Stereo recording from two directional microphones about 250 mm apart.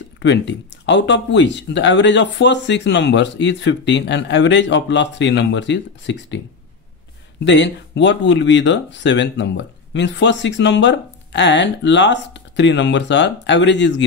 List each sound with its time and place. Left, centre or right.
0.2 s speech: left
7.4 s speech: left